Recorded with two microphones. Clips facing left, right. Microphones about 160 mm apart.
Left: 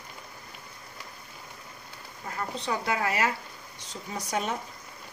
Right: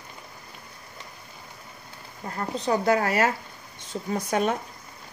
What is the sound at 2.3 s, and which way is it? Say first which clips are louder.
A woman's voice: right 6 dB; 40° right (ahead or behind).